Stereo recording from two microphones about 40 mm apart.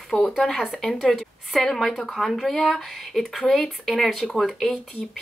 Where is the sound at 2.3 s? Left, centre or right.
Centre.